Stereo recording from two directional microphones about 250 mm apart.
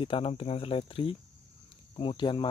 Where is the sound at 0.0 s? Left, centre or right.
Left.